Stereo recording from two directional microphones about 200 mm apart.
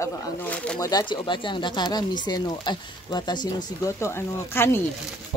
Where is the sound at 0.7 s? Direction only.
20° left (ahead or behind).